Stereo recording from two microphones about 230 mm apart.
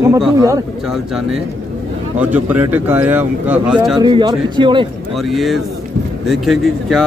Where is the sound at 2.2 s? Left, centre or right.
Centre.